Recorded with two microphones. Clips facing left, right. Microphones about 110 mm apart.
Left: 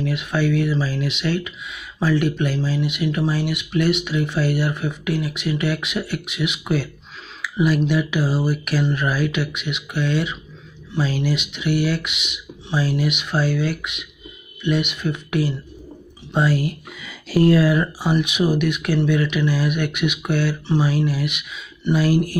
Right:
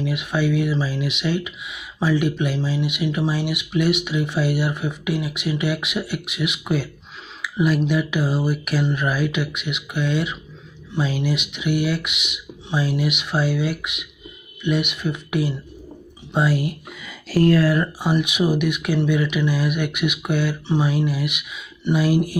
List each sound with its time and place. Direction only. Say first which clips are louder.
0.0 s speech: left 1 dB; 10° right (ahead or behind)
7.4 s a sound: left 1 dB; centre (ahead or behind)
7.9 s speech: left 1 dB; centre (ahead or behind)
17.3 s speech: left 1 dB; 15° left (ahead or behind)
17.6 s speech: left 1 dB; centre (ahead or behind)
20.8 s speech: left 1 dB; centre (ahead or behind)